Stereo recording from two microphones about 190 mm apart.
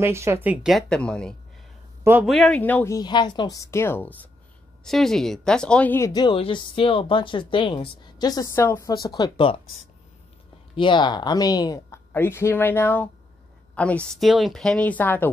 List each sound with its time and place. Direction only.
0.0 s speech: 15° right (ahead or behind); by 4.1 s 10° left (ahead or behind)
4.8 s speech: centre (ahead or behind); by 9.6 s 25° left (ahead or behind)
10.8 s speech: 25° left (ahead or behind)